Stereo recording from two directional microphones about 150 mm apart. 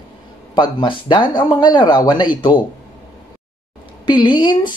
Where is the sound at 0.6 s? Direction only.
30° left (ahead or behind).